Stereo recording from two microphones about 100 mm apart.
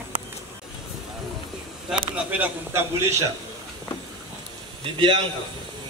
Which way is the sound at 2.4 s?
25° right (ahead or behind).